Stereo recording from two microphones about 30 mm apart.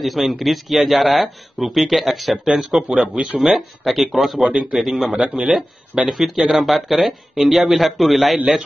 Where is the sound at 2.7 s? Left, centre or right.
Centre.